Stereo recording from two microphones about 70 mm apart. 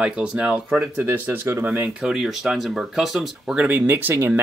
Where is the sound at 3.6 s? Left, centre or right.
Right.